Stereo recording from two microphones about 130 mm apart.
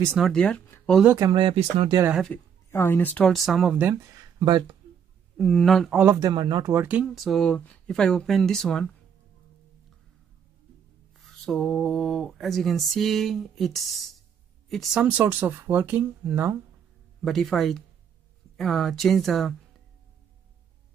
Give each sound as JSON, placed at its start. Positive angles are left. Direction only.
{"t": 0.1, "sound": "speech", "side_deg": 0}
{"t": 1.2, "sound": "speech", "side_deg": -40}
{"t": 2.3, "sound": "speech", "side_deg": 20}
{"t": 3.3, "sound": "speech", "side_deg": 0}
{"t": 3.7, "sound": "speech", "side_deg": -20}
{"t": 5.4, "sound": "speech", "side_deg": 5}
{"t": 6.1, "sound": "speech", "side_deg": -30}
{"t": 6.7, "sound": "speech", "side_deg": -15}
{"t": 7.2, "sound": "speech", "side_deg": 0}
{"t": 11.1, "sound": "speech", "side_deg": 0}
{"t": 17.2, "sound": "speech", "side_deg": 0}